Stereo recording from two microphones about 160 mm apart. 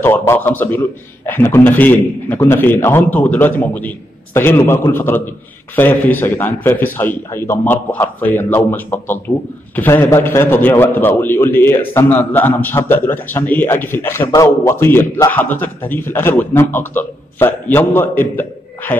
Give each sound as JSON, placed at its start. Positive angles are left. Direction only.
{"t": 0.0, "sound": "a man's voice", "side_deg": 15}